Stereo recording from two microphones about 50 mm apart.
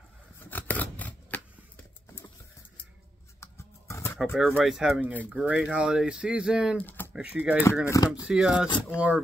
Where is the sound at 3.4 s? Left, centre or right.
Left.